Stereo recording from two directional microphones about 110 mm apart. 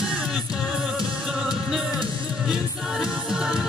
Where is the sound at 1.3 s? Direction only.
5° right (ahead or behind).